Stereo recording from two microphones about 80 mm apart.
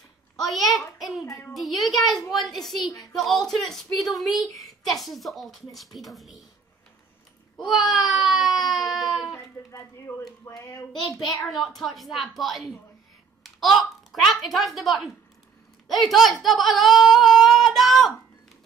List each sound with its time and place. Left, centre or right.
0.4 s a child's voice: centre
7.5 s baby cry: centre
9.3 s a sound: left
10.4 s speech: left
11.8 s a child's voice: centre